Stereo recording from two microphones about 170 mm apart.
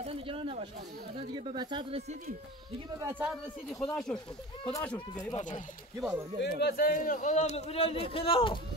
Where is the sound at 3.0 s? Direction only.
15° right (ahead or behind).